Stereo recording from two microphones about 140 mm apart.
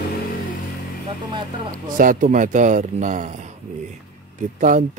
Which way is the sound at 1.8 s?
70° right (ahead or behind).